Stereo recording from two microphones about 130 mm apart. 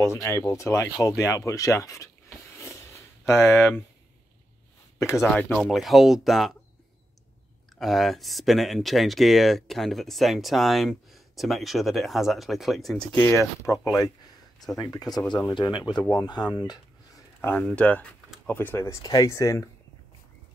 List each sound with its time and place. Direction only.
0.0 s speech: 20° left (ahead or behind)
2.6 s a sound: 20° left (ahead or behind)
4.9 s speech: 20° left (ahead or behind)
5.3 s speech: 5° left (ahead or behind)
7.7 s speech: centre (ahead or behind)
13.1 s speech: 20° left (ahead or behind)
16.0 s speech: 15° left (ahead or behind)
16.3 s speech: 30° left (ahead or behind)
17.4 s speech: 15° left (ahead or behind)